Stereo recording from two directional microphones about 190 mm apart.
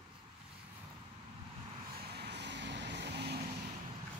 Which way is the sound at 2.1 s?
60° right (ahead or behind).